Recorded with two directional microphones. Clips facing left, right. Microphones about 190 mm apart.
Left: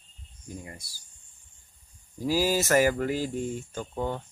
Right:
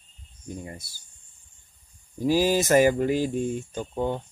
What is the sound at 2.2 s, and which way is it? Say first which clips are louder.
Speech: right 4 dB; 20° right (ahead or behind).